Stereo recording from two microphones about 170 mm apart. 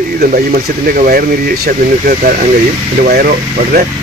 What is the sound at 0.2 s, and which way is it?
Speech, 60° right (ahead or behind).